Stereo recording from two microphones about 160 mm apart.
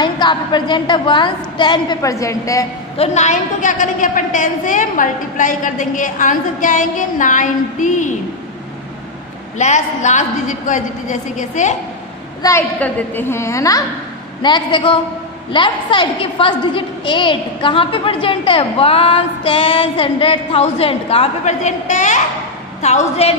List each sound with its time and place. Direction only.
0.0 s a woman's voice: 30° left (ahead or behind)
3.0 s a woman's voice: 45° left (ahead or behind)
9.6 s a woman's voice: 45° left (ahead or behind)
12.4 s a woman's voice: 15° left (ahead or behind); by 23.3 s 40° left (ahead or behind)